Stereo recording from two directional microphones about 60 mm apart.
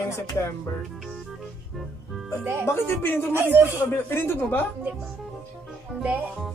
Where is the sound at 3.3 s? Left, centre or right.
Right.